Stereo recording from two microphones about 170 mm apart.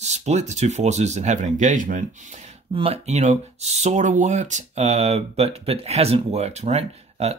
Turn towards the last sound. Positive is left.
turn(degrees=-40)  # may be behind; listen again after turning